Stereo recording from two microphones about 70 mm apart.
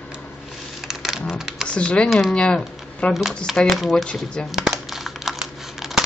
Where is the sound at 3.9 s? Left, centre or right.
Centre.